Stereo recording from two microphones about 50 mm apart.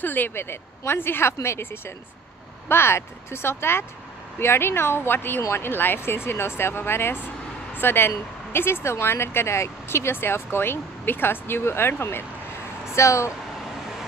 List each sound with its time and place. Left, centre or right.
0.0 s speech: left
12.9 s speech: left